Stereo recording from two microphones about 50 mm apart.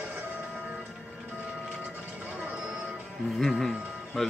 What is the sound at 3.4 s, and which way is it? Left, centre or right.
Speech, centre.